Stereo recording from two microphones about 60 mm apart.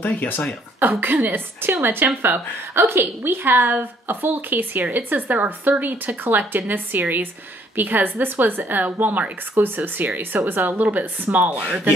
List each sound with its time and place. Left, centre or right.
0.0 s speech: left
0.7 s a woman's voice: right